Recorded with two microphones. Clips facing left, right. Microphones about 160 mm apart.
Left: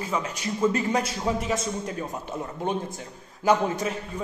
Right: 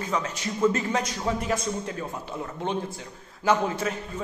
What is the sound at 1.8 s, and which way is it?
Speech, 15° left (ahead or behind).